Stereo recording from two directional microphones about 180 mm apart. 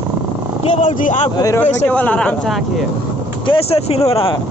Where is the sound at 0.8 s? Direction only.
45° left (ahead or behind).